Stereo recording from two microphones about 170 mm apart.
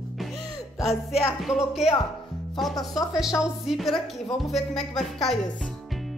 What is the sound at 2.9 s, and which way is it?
Speech, 20° left (ahead or behind).